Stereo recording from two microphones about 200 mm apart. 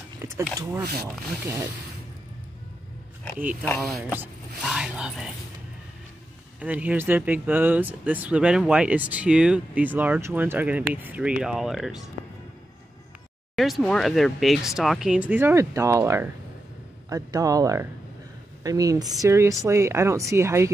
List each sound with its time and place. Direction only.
0.2 s a sound: 10° right (ahead or behind)
0.6 s speech: 10° right (ahead or behind)
3.9 s speech: 10° right (ahead or behind)
6.6 s speech: 5° right (ahead or behind)
13.6 s speech: centre (ahead or behind)